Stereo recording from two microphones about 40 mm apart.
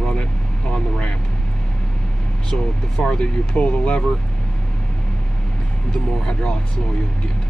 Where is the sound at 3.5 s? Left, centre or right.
Left.